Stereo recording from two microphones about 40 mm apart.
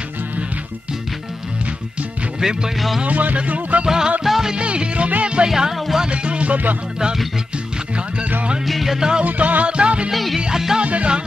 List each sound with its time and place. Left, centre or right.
2.4 s music: centre
3.1 s music: right
3.8 s music: centre
4.6 s music: right
5.5 s music: centre
6.0 s music: right
8.6 s music: centre
9.2 s music: right
10.1 s music: centre
10.8 s music: right